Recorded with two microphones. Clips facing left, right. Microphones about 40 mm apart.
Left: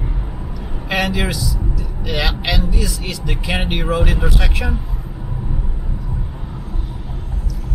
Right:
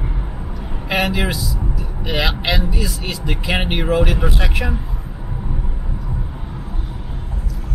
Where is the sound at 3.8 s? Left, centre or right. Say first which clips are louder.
Right 3 dB; centre.